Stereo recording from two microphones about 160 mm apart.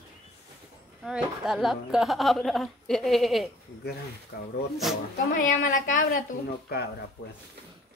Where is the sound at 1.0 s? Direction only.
5° right (ahead or behind).